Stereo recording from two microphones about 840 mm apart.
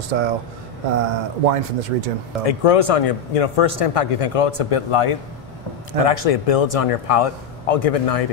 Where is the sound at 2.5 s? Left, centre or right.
Left.